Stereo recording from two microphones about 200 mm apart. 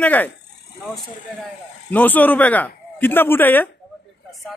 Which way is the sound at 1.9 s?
10° left (ahead or behind).